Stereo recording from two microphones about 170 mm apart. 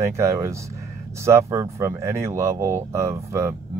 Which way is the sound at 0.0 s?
15° right (ahead or behind).